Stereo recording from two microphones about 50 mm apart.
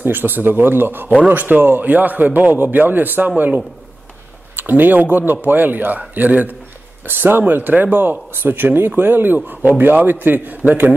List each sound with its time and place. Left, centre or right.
0.0 s speech: right
7.1 s speech: right